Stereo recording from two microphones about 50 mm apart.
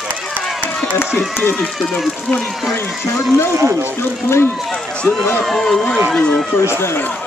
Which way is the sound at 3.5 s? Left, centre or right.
Right.